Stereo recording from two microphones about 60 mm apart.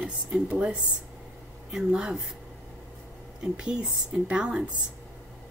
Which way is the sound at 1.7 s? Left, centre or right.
Centre.